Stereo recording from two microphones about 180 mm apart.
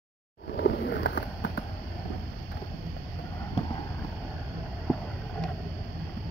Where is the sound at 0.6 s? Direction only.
65° left (ahead or behind).